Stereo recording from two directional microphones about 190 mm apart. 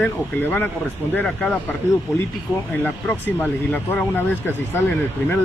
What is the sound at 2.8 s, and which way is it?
Speech, 10° left (ahead or behind).